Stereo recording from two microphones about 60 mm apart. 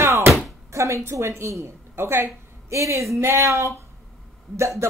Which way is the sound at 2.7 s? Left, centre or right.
Right.